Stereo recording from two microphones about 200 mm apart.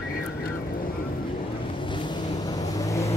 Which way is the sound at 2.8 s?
15° left (ahead or behind).